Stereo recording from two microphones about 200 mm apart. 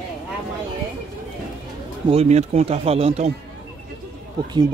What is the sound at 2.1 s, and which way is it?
Speech, 35° right (ahead or behind).